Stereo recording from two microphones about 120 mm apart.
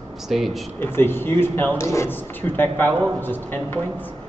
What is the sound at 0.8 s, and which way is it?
Speech, 20° left (ahead or behind).